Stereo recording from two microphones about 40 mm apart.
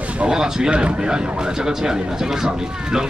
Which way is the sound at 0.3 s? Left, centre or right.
Centre.